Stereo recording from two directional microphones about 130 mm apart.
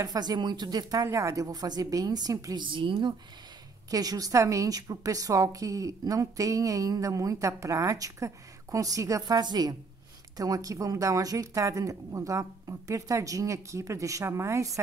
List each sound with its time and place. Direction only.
0.0 s a woman's voice: 30° right (ahead or behind)
2.6 s a woman's voice: 40° right (ahead or behind); by 14.8 s 25° right (ahead or behind)